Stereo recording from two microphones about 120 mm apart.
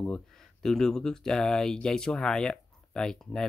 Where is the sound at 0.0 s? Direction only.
5° left (ahead or behind).